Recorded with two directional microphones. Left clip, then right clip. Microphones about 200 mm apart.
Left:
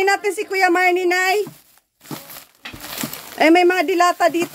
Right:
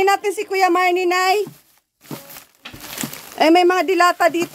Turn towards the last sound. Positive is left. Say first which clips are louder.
# right 1 dB
turn(degrees=-10)  # may be behind; listen again after turning